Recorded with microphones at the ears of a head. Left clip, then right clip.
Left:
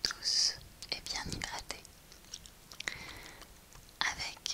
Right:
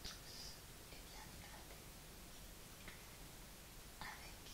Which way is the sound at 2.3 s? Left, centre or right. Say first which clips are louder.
Left 8 dB; left.